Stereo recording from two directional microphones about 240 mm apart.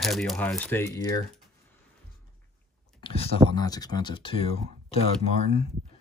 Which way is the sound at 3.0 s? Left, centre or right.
Left.